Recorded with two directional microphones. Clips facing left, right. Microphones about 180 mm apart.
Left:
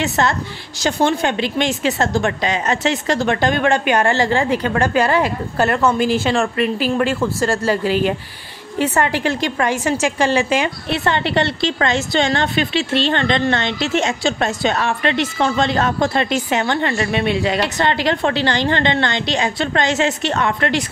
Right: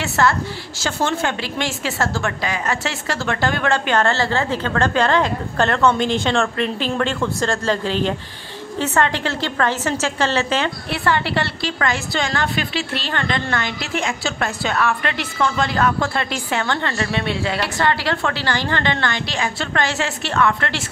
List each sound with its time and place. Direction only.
0.0 s a woman's voice: 20° left (ahead or behind)